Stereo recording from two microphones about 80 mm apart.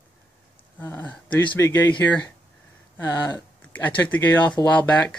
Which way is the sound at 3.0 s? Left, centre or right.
Left.